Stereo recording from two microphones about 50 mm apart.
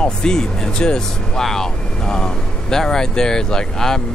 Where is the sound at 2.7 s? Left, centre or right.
Centre.